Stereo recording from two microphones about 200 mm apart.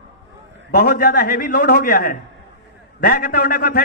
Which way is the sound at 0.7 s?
50° left (ahead or behind).